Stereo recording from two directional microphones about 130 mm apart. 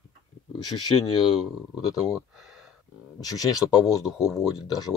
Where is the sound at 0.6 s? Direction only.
30° left (ahead or behind).